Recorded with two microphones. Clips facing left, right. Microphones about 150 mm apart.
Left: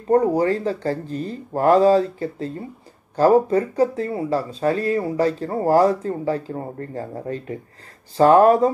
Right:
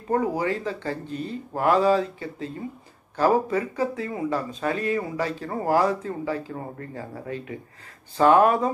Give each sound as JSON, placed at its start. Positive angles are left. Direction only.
{"t": 0.1, "sound": "speech", "side_deg": 40}